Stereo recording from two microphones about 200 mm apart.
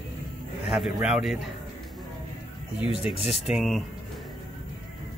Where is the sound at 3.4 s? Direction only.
Centre (ahead or behind).